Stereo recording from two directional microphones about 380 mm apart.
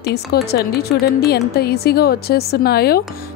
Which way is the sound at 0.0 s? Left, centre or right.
Left.